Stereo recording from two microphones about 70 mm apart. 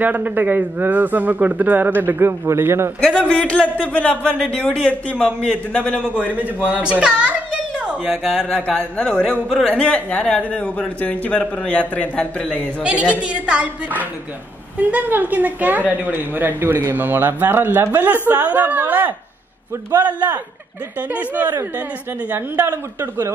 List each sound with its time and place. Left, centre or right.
0.0 s speech: right
3.0 s speech: centre
6.1 s speech: right
7.8 s a sound: centre
8.2 s speech: centre
8.5 s speech: centre
9.7 s speech: centre
12.8 s a woman's voice: centre